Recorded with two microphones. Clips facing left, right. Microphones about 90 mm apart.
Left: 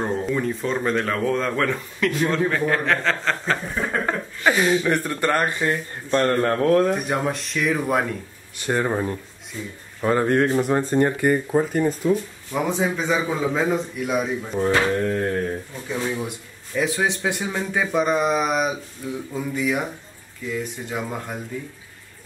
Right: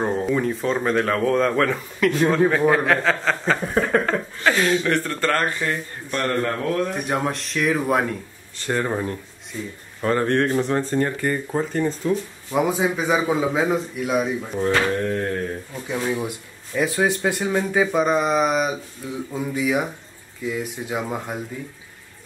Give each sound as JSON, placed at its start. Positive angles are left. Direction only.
{"t": 0.0, "sound": "speech", "side_deg": -5}
{"t": 4.0, "sound": "speech", "side_deg": 15}
{"t": 7.1, "sound": "speech", "side_deg": 0}
{"t": 8.5, "sound": "speech", "side_deg": 15}
{"t": 9.5, "sound": "speech", "side_deg": 0}
{"t": 12.5, "sound": "speech", "side_deg": -5}
{"t": 15.9, "sound": "speech", "side_deg": -10}